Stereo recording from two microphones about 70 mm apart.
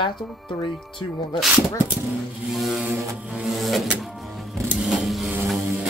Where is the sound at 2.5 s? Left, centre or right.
Centre.